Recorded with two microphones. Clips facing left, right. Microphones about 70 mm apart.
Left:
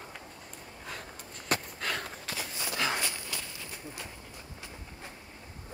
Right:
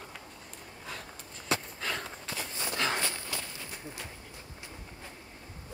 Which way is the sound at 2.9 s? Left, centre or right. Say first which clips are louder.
Right 1 dB; right.